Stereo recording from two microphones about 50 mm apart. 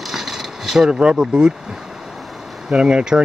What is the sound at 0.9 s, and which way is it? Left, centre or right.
Speech, centre.